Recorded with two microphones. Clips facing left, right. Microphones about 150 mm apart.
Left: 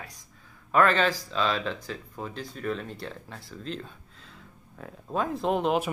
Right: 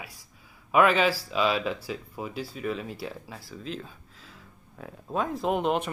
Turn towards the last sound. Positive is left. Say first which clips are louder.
# left 1 dB
turn(degrees=0)  # may be behind; listen again after turning